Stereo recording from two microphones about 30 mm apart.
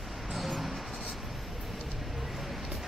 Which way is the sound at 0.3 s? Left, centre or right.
Centre.